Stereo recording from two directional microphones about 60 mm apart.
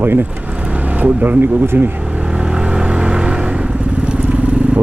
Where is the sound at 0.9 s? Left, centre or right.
Right.